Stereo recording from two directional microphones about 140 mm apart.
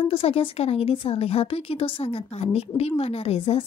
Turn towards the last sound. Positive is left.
turn(degrees=45)  # may be behind; listen again after turning